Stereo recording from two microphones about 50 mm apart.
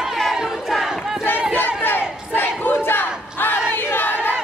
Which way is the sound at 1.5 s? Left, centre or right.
Left.